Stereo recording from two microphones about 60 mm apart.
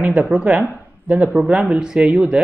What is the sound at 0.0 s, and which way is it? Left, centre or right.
Speech, right.